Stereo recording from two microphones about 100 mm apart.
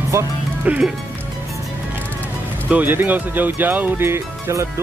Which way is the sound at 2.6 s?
15° right (ahead or behind).